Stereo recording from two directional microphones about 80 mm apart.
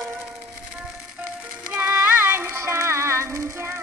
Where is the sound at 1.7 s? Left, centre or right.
Right.